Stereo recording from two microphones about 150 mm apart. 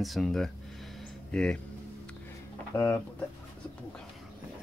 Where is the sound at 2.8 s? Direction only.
15° left (ahead or behind).